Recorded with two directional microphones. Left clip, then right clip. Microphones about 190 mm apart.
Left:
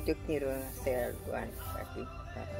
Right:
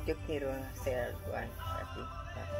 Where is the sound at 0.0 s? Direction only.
20° left (ahead or behind).